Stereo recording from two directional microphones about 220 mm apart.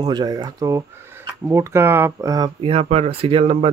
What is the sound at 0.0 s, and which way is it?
Speech, 20° right (ahead or behind).